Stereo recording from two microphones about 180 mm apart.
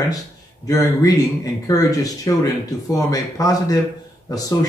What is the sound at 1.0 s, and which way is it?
Speech, 20° left (ahead or behind).